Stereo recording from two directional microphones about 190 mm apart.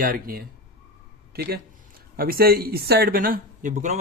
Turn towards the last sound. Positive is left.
turn(degrees=-40)  # may be behind; listen again after turning